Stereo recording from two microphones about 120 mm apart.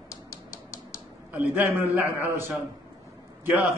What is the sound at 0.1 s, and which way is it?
Typewriter, 25° left (ahead or behind).